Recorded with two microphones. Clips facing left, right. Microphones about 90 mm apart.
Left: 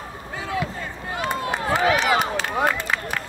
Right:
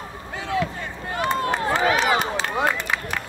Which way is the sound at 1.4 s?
40° right (ahead or behind).